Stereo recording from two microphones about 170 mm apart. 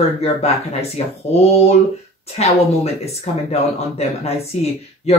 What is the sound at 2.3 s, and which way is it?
Speech, 40° left (ahead or behind).